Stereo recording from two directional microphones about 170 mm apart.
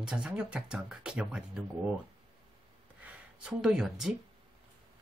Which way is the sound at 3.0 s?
5° right (ahead or behind).